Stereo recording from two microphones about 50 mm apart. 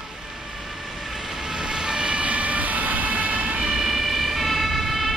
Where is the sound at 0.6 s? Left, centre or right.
Centre; by 3.6 s right.